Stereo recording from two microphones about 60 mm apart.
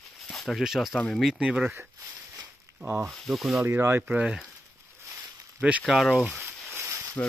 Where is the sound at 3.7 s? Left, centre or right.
Right.